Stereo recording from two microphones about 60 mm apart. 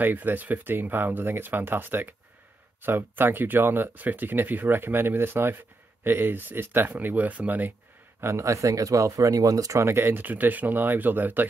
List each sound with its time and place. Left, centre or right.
0.0 s speech: right
8.2 s speech: right
9.8 s speech: right
10.2 s speech: right